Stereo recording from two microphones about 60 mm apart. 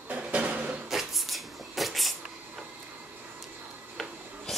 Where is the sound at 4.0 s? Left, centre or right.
Centre.